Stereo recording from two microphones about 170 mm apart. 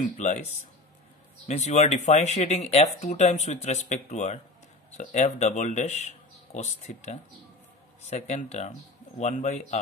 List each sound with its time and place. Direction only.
0.0 s speech: 45° left (ahead or behind)